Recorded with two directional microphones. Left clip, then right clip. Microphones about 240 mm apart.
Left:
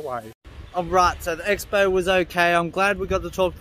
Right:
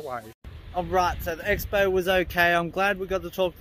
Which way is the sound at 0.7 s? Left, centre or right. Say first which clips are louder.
Left 5 dB; centre.